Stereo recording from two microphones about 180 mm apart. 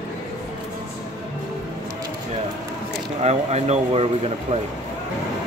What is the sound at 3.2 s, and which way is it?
Speech, 35° right (ahead or behind).